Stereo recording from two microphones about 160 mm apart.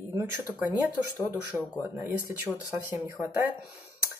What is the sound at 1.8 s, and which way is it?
Speech, 15° right (ahead or behind).